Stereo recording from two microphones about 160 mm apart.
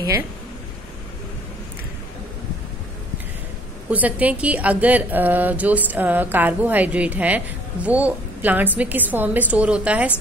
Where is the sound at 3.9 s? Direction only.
10° right (ahead or behind).